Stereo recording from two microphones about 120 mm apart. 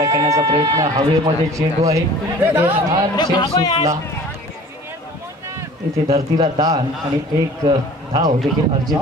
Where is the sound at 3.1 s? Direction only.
35° left (ahead or behind).